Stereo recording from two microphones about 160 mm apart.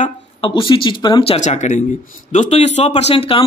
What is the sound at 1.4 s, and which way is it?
Speech, 45° left (ahead or behind).